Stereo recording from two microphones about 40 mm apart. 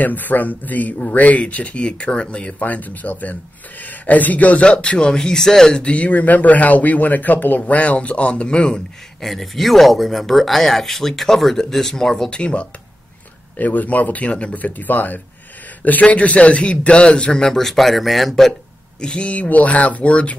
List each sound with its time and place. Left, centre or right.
0.0 s a man's voice: left
2.6 s speech: left
4.6 s speech: left
5.8 s speech: left
7.7 s a man's voice: left
9.2 s speech: centre
12.3 s a man's voice: left
13.6 s speech: left
14.3 s a man's voice: left
14.6 s a man's voice: left; by 18.5 s centre
18.9 s speech: left